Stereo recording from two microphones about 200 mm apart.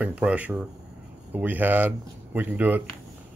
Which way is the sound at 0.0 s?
5° right (ahead or behind).